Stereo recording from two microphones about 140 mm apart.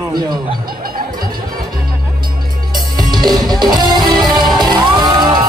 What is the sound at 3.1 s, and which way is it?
Music, 30° right (ahead or behind).